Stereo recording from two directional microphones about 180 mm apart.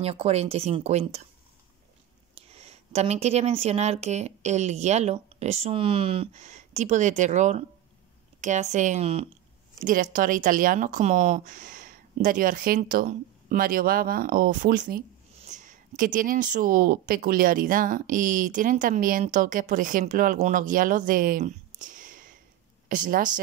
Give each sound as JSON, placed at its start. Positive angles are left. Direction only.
{"t": 0.0, "sound": "speech", "side_deg": -35}
{"t": 2.3, "sound": "speech", "side_deg": -35}
{"t": 9.8, "sound": "a woman's voice", "side_deg": -50}